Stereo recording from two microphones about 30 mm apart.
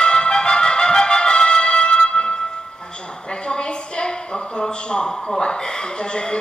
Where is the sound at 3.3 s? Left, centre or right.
Left.